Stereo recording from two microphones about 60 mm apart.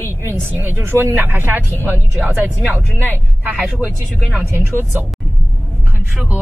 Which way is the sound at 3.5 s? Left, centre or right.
Right.